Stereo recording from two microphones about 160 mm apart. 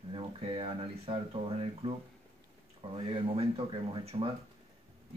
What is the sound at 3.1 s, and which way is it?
Speech, 35° right (ahead or behind).